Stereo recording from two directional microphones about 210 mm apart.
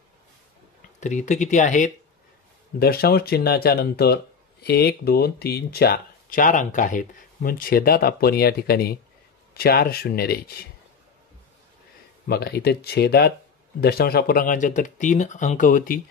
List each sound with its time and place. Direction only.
1.0 s speech: 35° left (ahead or behind)
2.8 s speech: 45° left (ahead or behind)
12.3 s speech: 50° left (ahead or behind)